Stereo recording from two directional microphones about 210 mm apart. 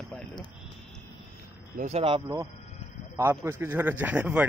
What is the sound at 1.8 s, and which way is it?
Speech, 30° right (ahead or behind).